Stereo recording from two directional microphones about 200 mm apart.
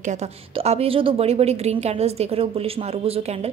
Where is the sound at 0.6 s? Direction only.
30° right (ahead or behind).